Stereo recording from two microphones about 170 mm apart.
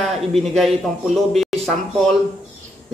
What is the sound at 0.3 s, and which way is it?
Speech, centre (ahead or behind).